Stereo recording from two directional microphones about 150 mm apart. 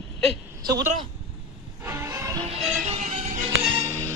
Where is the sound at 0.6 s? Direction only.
25° right (ahead or behind).